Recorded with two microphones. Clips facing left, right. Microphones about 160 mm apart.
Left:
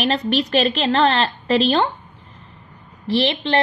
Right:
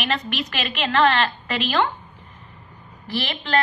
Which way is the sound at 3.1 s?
30° left (ahead or behind).